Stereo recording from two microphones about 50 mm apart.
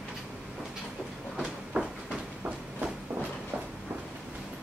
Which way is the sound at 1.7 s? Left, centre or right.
Centre.